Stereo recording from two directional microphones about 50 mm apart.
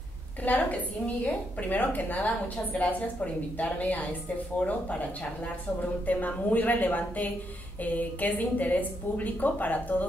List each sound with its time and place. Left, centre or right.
0.4 s a woman's voice: left
6.0 s a woman's voice: left